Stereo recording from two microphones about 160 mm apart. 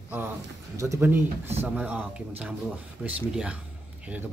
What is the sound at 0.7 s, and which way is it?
Speech, 20° right (ahead or behind).